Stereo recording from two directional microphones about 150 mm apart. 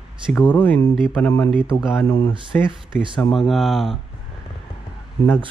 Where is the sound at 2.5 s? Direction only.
10° left (ahead or behind).